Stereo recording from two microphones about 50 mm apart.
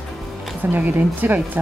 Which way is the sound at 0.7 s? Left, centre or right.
Right.